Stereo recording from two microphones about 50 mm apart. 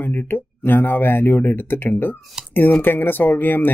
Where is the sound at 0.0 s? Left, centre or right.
Left.